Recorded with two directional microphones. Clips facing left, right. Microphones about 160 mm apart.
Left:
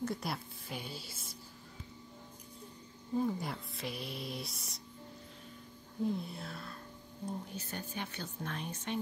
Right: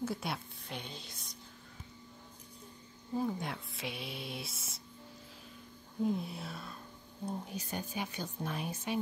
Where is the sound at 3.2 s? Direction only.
Centre (ahead or behind).